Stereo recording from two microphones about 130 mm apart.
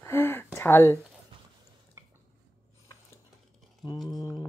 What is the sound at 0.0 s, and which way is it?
Speech, 20° left (ahead or behind).